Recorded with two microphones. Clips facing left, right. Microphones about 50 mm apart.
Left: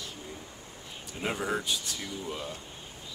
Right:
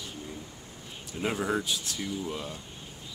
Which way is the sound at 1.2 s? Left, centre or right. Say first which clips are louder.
Right 2 dB; centre.